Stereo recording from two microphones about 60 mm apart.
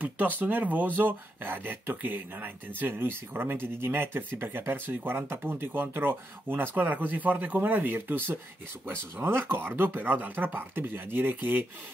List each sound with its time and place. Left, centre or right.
0.0 s speech: right